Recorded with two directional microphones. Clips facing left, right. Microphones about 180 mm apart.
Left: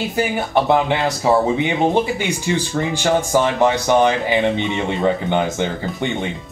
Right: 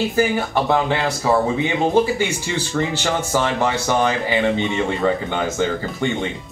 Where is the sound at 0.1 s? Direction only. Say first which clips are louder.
Even; 20° left (ahead or behind).